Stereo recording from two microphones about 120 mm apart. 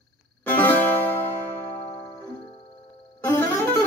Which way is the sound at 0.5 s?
15° left (ahead or behind).